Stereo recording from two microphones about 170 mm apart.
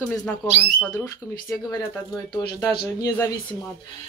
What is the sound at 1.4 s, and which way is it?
Speech, 20° left (ahead or behind).